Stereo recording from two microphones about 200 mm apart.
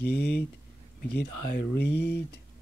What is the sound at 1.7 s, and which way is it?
Speech, 55° left (ahead or behind).